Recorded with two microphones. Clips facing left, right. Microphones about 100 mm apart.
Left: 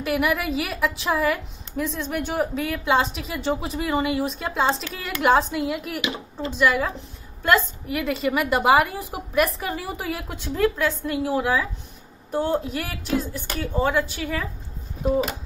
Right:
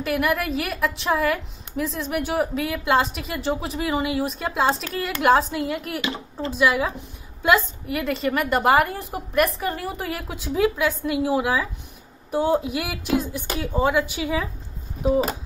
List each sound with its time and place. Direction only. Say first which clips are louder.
0.0 s a woman's voice: even; centre (ahead or behind)
5.9 s speech: right 1 dB; 20° left (ahead or behind)
6.5 s speech: even; 5° right (ahead or behind)
7.9 s a woman's voice: even; centre (ahead or behind); by 14.5 s 15° right (ahead or behind)